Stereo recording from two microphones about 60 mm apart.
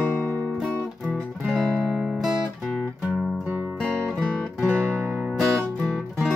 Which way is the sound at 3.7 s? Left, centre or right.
Centre.